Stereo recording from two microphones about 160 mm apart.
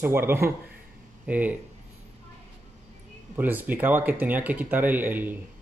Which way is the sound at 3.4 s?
10° right (ahead or behind).